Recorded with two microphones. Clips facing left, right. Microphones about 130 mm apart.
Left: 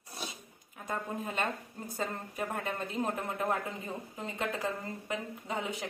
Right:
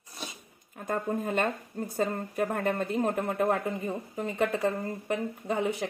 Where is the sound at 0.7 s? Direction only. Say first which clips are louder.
Right 6 dB; 50° right (ahead or behind).